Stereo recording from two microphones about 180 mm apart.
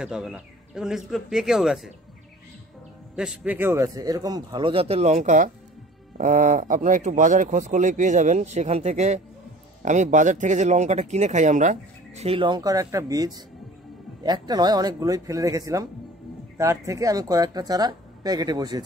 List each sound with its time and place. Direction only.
0.0 s speech: 5° right (ahead or behind)
3.2 s speech: 5° right (ahead or behind); by 18.8 s 20° right (ahead or behind)